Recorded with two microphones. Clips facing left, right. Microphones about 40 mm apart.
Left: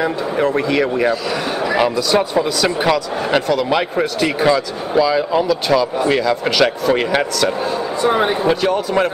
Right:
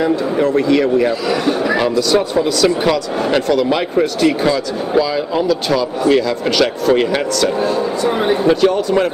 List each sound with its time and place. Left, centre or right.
0.0 s a man's voice: centre
8.0 s speech: centre
8.5 s a man's voice: centre